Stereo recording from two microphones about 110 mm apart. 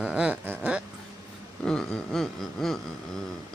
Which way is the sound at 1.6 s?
5° left (ahead or behind).